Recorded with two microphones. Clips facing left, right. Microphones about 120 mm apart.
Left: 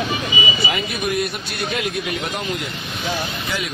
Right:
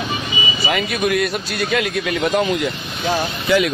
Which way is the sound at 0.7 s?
75° right (ahead or behind).